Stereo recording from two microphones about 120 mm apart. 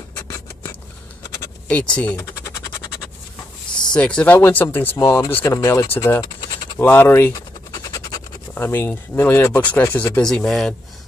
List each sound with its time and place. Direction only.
1.7 s speech: 10° left (ahead or behind)
3.9 s speech: 10° left (ahead or behind)
6.2 s a sound: 40° left (ahead or behind)
6.8 s speech: 20° left (ahead or behind)
7.3 s scratch: 30° left (ahead or behind)
8.5 s speech: 20° left (ahead or behind)
10.2 s speech: 5° left (ahead or behind)